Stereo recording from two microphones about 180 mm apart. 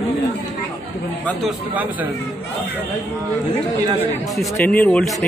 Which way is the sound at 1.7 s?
10° right (ahead or behind).